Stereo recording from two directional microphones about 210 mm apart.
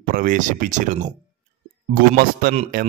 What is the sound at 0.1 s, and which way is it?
Speech, 40° right (ahead or behind).